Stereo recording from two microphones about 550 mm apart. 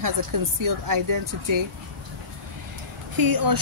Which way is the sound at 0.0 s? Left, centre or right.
Right.